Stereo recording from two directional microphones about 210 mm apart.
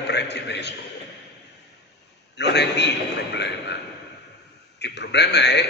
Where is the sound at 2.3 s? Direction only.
55° left (ahead or behind).